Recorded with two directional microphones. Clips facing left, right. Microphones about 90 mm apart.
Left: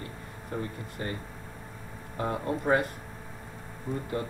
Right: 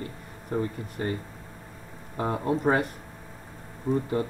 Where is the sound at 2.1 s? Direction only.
30° right (ahead or behind).